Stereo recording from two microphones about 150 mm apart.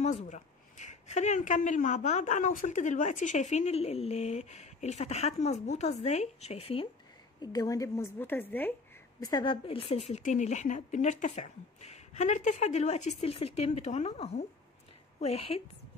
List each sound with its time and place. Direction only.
0.0 s speech: 50° left (ahead or behind)
7.4 s a woman's voice: 25° left (ahead or behind)
9.2 s speech: 30° left (ahead or behind)